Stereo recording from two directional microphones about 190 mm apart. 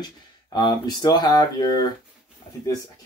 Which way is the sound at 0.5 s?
25° left (ahead or behind).